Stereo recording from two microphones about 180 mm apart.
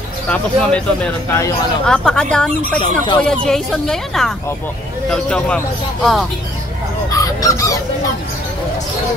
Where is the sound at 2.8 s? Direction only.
25° left (ahead or behind).